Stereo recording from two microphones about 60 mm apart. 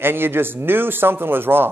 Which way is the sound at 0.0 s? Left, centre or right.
Right.